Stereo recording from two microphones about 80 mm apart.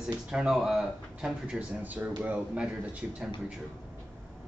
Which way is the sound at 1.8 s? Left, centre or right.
Right.